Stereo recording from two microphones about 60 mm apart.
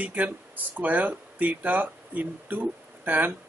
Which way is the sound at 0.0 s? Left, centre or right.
Right.